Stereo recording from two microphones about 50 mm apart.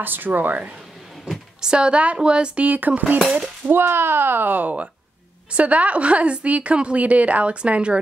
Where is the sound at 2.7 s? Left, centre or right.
Right.